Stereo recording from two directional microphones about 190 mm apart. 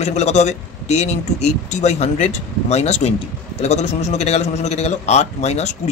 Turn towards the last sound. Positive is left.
turn(degrees=35)  # may be behind; listen again after turning